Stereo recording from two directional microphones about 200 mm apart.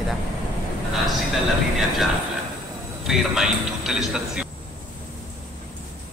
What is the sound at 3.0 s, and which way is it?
Speech, centre (ahead or behind).